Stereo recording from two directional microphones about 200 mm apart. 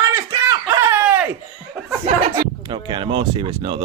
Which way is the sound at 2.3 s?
25° right (ahead or behind).